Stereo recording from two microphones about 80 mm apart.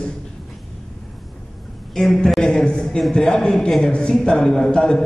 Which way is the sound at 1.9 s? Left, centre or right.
Centre.